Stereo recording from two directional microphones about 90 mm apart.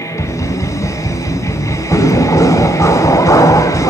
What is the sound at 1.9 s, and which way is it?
Music, 35° left (ahead or behind).